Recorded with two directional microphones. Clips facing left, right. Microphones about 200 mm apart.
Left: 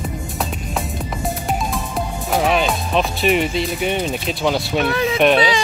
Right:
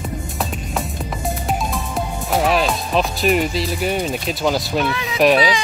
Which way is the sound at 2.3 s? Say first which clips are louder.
Even; centre (ahead or behind).